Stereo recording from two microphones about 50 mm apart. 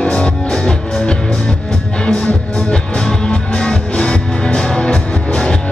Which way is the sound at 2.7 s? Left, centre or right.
Centre.